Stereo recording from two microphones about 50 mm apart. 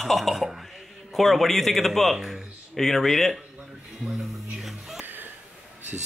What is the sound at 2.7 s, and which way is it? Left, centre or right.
Speech, centre.